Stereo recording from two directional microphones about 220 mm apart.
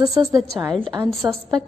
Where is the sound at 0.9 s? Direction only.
15° right (ahead or behind).